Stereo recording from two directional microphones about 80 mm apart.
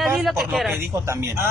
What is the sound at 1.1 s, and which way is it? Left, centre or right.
Speech, right.